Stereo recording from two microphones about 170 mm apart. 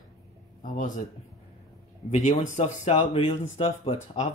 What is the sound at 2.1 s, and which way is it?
Speech, 45° left (ahead or behind).